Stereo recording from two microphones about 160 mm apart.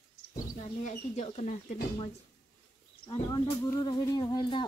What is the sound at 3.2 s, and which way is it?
Speech, 20° left (ahead or behind).